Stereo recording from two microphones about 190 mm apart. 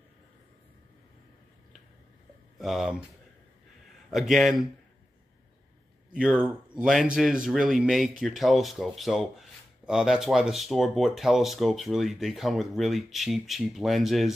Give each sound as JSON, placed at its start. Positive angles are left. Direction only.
{"t": 2.6, "sound": "speech", "side_deg": 0}
{"t": 4.1, "sound": "speech", "side_deg": 0}
{"t": 6.1, "sound": "speech", "side_deg": -5}